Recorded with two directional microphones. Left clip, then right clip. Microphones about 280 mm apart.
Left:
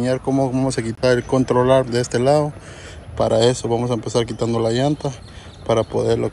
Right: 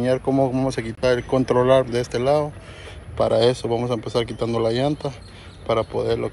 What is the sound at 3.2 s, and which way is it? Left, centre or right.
Speech, centre.